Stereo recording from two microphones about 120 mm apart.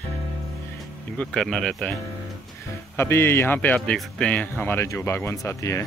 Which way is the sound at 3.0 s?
20° left (ahead or behind).